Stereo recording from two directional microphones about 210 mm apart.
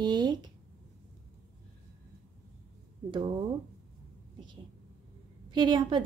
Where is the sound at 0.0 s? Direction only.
20° right (ahead or behind).